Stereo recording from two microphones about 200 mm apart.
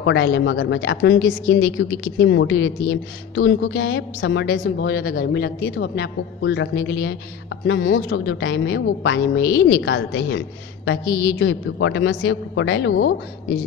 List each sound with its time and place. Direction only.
0.0 s a woman's voice: 65° left (ahead or behind)